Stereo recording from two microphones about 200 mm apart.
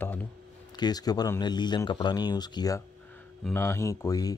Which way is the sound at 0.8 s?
20° left (ahead or behind).